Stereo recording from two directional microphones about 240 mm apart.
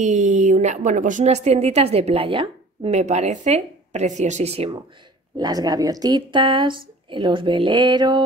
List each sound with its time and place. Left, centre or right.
0.0 s a woman's voice: right